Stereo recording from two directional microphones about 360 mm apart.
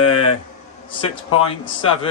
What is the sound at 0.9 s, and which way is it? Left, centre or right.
A man's voice, centre.